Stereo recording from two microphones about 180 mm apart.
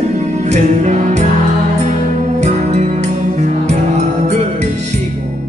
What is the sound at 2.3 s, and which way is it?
Music, 40° right (ahead or behind).